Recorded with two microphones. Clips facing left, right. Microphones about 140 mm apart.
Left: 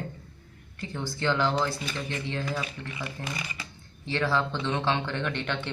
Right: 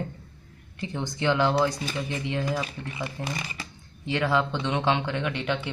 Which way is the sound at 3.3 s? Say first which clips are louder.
Right 2 dB; 30° right (ahead or behind).